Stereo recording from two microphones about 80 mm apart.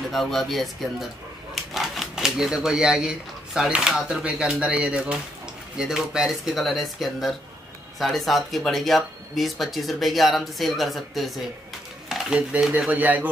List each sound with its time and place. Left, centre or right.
0.1 s speech: centre
12.1 s speech: centre